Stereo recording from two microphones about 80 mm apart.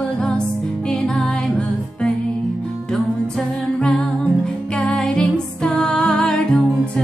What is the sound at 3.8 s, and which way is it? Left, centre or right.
Music, centre.